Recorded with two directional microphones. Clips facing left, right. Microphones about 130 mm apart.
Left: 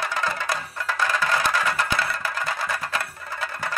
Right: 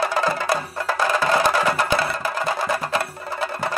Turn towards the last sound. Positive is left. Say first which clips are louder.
# right 5 dB
turn(degrees=-30)  # may be behind; listen again after turning